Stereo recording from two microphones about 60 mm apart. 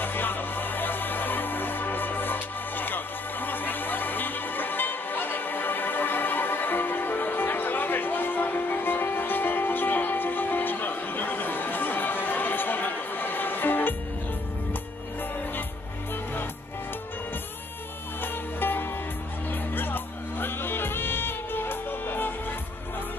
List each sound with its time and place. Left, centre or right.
0.0 s music: left
18.2 s music: left